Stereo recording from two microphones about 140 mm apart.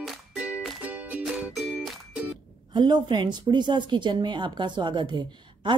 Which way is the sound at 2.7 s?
30° right (ahead or behind).